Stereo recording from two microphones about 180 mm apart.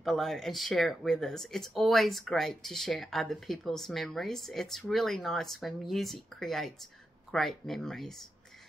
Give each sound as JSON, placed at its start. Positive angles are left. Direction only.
{"t": 0.0, "sound": "speech", "side_deg": 0}